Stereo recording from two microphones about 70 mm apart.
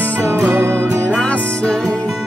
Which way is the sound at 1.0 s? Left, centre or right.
Centre.